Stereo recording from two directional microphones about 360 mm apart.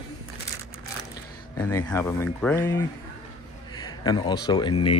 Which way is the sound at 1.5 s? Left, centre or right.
Centre.